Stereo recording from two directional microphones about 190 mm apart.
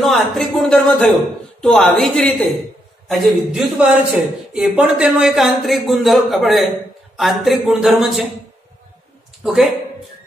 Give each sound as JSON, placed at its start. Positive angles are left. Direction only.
{"t": 0.0, "sound": "a man's voice", "side_deg": 0}
{"t": 9.4, "sound": "a man's voice", "side_deg": 0}